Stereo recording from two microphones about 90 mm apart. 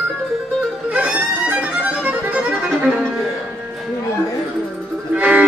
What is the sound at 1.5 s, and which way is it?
Music, 15° right (ahead or behind).